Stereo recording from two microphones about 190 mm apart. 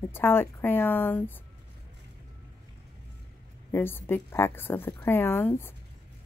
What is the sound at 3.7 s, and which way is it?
Speech, 10° left (ahead or behind).